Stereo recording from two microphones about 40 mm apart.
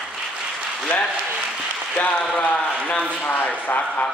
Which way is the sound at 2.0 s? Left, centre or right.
Left.